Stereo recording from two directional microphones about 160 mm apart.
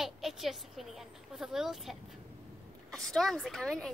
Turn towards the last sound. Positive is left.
turn(degrees=5)  # may be behind; listen again after turning